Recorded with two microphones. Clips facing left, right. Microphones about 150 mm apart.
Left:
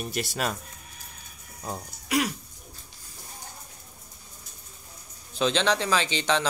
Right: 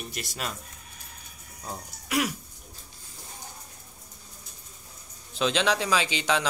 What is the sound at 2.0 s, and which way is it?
Cough, centre (ahead or behind).